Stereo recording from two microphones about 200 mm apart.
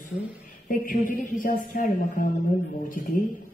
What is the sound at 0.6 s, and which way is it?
Speech, 45° left (ahead or behind).